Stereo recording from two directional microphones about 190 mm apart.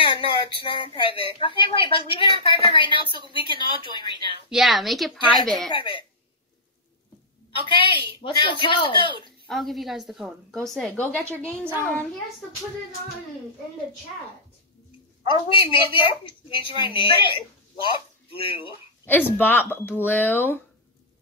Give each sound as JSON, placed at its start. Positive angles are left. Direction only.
{"t": 0.0, "sound": "a woman's voice", "side_deg": 25}
{"t": 4.5, "sound": "a woman's voice", "side_deg": 0}
{"t": 5.7, "sound": "a woman's voice", "side_deg": 25}
{"t": 7.5, "sound": "a woman's voice", "side_deg": 25}
{"t": 9.5, "sound": "a woman's voice", "side_deg": 0}
{"t": 15.8, "sound": "a woman's voice", "side_deg": 25}
{"t": 19.0, "sound": "speech", "side_deg": 10}